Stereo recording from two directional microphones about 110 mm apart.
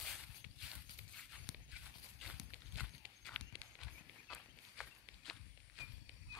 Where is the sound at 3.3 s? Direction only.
Centre (ahead or behind).